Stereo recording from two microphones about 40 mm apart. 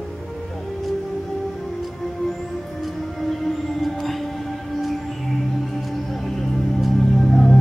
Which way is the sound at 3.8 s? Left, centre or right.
Centre.